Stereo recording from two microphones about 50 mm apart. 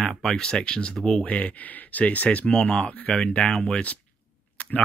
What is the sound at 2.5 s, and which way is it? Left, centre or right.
Speech, centre.